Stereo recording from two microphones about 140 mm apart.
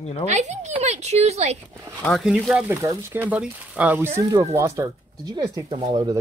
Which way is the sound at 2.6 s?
15° right (ahead or behind).